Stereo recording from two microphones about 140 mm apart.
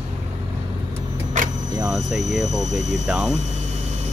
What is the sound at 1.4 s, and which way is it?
Vehicle, 65° right (ahead or behind).